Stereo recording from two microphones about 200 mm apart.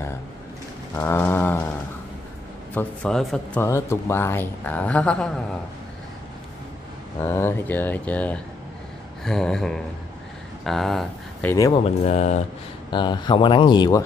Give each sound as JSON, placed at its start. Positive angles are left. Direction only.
{"t": 0.9, "sound": "speech", "side_deg": 10}
{"t": 2.7, "sound": "speech", "side_deg": 5}
{"t": 3.6, "sound": "speech", "side_deg": 15}
{"t": 7.2, "sound": "speech", "side_deg": 10}
{"t": 9.2, "sound": "a sound", "side_deg": 0}
{"t": 10.6, "sound": "speech", "side_deg": 0}
{"t": 11.5, "sound": "speech", "side_deg": 15}
{"t": 12.1, "sound": "speech", "side_deg": 30}
{"t": 12.9, "sound": "speech", "side_deg": 20}